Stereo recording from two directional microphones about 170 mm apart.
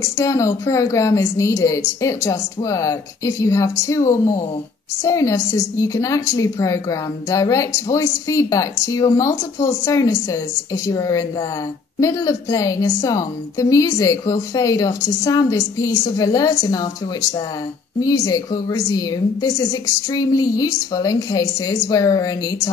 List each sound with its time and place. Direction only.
0.0 s a woman's voice: 20° left (ahead or behind)